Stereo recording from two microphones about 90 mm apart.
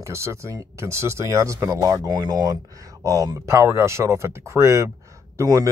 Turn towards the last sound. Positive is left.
turn(degrees=-40)  # may be behind; listen again after turning